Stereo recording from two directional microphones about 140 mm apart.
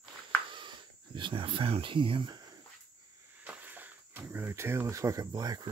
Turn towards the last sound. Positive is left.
turn(degrees=-25)  # may be behind; listen again after turning